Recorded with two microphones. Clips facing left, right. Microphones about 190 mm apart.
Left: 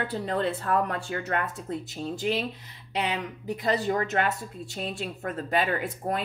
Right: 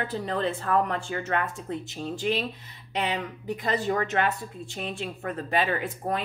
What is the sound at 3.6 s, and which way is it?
Speech, 40° left (ahead or behind).